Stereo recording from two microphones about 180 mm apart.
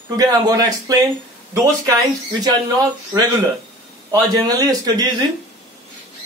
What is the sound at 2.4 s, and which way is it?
Speech, 20° right (ahead or behind).